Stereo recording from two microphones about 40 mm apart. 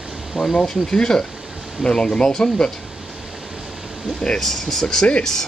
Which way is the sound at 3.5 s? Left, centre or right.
Centre.